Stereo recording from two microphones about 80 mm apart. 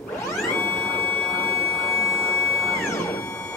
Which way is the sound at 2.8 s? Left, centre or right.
Left.